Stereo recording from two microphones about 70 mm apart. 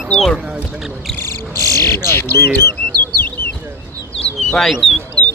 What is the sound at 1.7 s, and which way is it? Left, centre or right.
Speech, left.